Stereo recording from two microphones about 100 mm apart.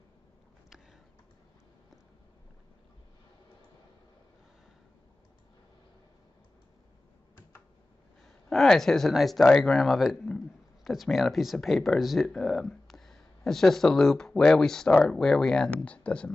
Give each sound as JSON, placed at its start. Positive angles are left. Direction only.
{"t": 8.5, "sound": "speech", "side_deg": 5}